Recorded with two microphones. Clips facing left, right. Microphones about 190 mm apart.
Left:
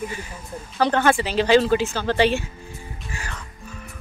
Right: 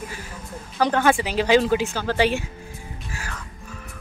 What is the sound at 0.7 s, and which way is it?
Speech, 10° right (ahead or behind).